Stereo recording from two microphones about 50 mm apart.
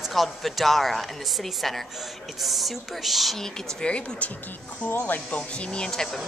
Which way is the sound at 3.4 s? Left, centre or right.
Centre.